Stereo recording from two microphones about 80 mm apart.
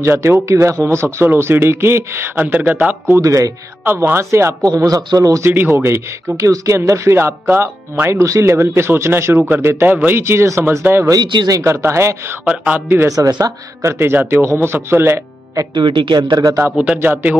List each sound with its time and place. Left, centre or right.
0.0 s speech: right
1.2 s speech: right
2.3 s speech: centre
3.2 s a man's voice: right
3.8 s speech: right
5.5 s speech: right
12.4 s speech: centre
12.8 s speech: right
15.7 s speech: right
16.3 s a man's voice: right
16.7 s speech: centre